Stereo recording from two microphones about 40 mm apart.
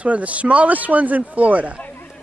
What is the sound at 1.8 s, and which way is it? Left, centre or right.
Chatter, left.